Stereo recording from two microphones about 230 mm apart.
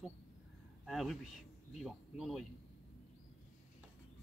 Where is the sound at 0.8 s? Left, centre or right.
Centre.